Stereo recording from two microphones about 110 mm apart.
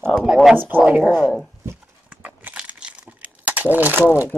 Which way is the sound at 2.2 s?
15° right (ahead or behind).